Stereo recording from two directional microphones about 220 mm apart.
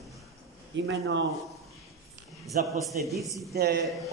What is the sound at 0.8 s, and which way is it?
Speech, 60° right (ahead or behind).